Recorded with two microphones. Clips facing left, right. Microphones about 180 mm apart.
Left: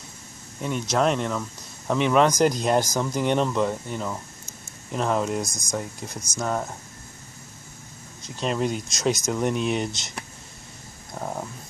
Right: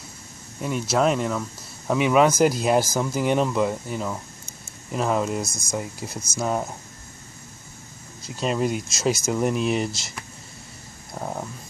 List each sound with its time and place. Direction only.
0.6 s speech: 5° right (ahead or behind)
8.2 s speech: 5° right (ahead or behind)
11.1 s speech: 5° right (ahead or behind)